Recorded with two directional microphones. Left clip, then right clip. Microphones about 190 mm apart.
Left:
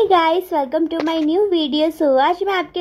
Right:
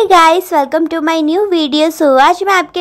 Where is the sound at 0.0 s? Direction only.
20° right (ahead or behind).